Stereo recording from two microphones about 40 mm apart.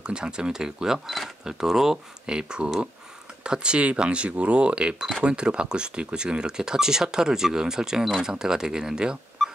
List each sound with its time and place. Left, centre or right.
0.0 s speech: right